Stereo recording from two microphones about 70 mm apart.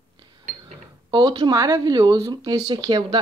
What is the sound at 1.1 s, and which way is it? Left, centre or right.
Speech, right.